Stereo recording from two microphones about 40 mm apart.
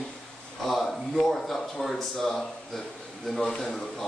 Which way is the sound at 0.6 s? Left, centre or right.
Centre.